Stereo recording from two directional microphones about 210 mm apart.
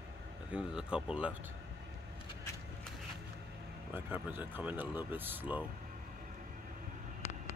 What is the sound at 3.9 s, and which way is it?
Speech, 10° right (ahead or behind).